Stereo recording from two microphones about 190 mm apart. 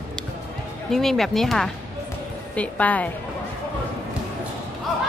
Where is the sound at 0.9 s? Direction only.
Centre (ahead or behind).